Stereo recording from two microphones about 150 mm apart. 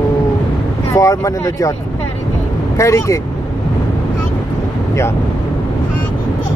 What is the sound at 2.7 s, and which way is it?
Speech, 20° left (ahead or behind).